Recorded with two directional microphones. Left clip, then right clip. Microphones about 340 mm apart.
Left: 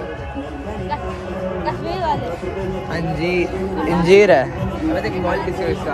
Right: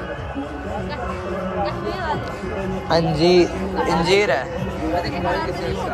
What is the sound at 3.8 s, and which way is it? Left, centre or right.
Speech, right.